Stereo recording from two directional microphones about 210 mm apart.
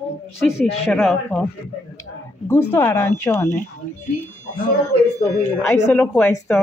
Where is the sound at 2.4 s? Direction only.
10° left (ahead or behind).